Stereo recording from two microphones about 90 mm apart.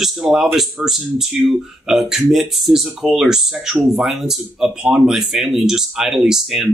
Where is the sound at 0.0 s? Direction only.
5° right (ahead or behind).